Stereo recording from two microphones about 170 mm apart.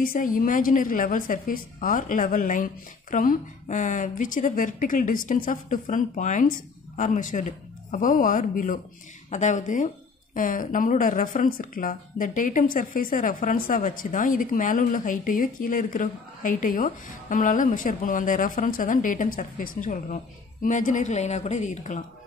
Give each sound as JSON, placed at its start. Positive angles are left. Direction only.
{"t": 0.0, "sound": "speech", "side_deg": 55}